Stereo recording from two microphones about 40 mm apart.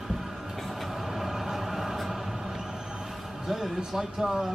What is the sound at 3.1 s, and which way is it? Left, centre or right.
Speech, centre.